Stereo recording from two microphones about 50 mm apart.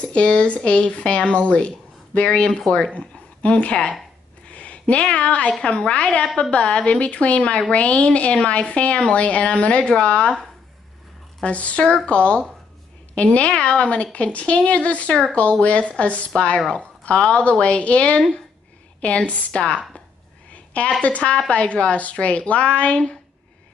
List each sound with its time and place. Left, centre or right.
0.0 s a woman's voice: left
11.4 s a woman's voice: left
20.5 s a sound: left
21.0 s a woman's voice: left